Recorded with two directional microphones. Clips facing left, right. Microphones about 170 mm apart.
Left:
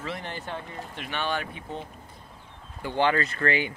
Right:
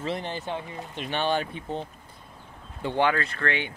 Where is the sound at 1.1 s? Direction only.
30° right (ahead or behind).